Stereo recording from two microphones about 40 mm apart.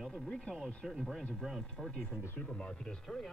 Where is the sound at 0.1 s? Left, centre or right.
Left.